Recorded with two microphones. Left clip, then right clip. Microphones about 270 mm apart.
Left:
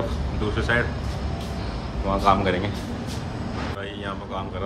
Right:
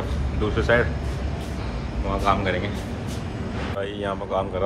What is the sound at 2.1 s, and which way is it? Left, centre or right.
Speech, centre.